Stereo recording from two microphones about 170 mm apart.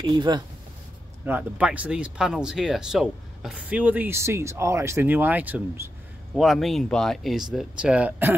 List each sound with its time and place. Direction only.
0.0 s speech: 25° right (ahead or behind)
1.2 s speech: 10° right (ahead or behind)